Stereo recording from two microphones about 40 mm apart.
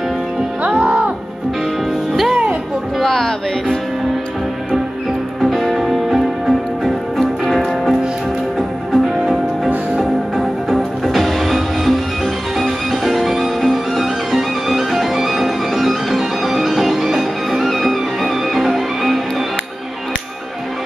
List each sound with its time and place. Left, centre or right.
0.7 s music: right
1.9 s music: centre
3.0 s music: centre
5.4 s music: centre
8.5 s music: centre